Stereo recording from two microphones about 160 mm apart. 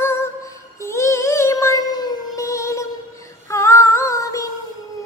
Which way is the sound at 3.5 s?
20° left (ahead or behind).